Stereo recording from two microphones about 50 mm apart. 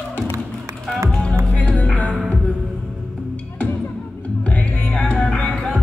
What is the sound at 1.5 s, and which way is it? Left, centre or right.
Music, left.